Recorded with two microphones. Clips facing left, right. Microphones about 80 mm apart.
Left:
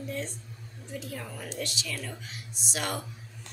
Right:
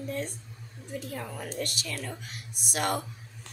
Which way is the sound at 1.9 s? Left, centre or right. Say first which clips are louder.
Right 1 dB; right.